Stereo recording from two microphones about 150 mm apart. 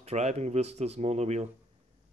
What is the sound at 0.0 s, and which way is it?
Speech, 45° right (ahead or behind).